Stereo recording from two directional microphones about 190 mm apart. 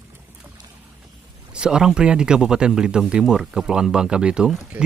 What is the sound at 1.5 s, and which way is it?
Speech, 5° right (ahead or behind).